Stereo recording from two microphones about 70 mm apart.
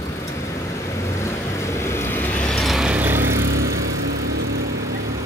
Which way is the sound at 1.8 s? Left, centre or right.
Left.